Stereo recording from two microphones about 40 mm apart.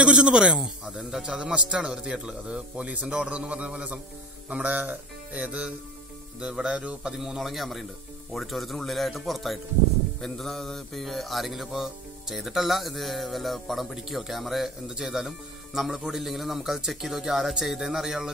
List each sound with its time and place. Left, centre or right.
0.0 s a man's voice: right
4.5 s music: right
6.4 s a man's voice: right
7.0 s speech: centre
7.3 s music: centre
15.0 s speech: centre